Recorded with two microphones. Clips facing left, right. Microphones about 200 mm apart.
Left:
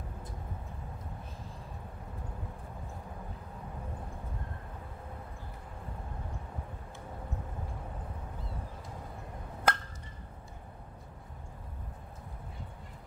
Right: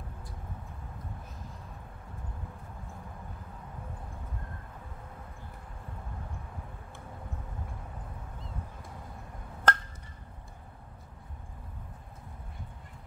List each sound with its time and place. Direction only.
9.7 s turkey: 10° left (ahead or behind)